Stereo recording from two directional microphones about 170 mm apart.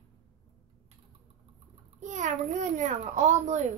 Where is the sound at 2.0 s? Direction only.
45° right (ahead or behind).